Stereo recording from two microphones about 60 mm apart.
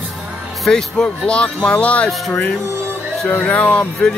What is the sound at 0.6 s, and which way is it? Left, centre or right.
Speech, centre.